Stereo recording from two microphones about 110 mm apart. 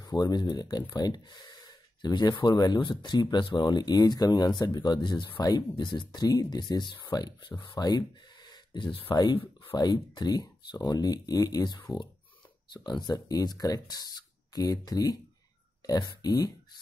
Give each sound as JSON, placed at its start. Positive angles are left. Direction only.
{"t": 0.0, "sound": "speech", "side_deg": 35}
{"t": 9.1, "sound": "speech", "side_deg": 40}